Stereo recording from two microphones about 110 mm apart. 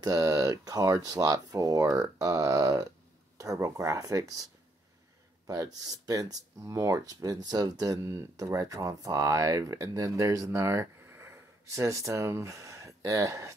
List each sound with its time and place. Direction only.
0.0 s speech: 35° right (ahead or behind)
5.5 s speech: 35° right (ahead or behind)